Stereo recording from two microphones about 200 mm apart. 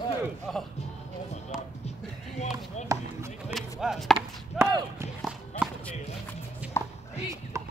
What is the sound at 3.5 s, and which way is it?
Chop, centre (ahead or behind).